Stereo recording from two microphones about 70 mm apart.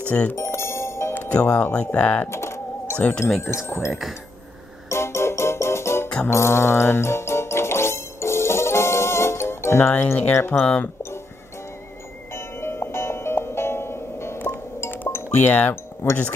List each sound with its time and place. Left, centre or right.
0.1 s speech: left
0.4 s music: left
1.1 s speech: left
2.2 s typing: left
3.0 s speech: centre
3.4 s speech: left
4.8 s music: left
6.0 s music: centre
6.3 s music: left
10.3 s speech: left
12.3 s music: left
15.3 s speech: left
15.7 s speech: left